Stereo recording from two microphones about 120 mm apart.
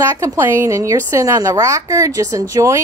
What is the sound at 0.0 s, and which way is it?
Speech, 25° right (ahead or behind).